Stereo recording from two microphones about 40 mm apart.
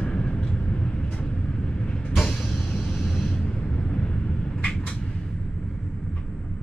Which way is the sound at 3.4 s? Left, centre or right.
Left.